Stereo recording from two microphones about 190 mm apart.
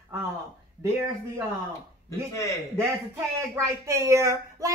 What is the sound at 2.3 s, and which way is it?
Speech, 15° left (ahead or behind).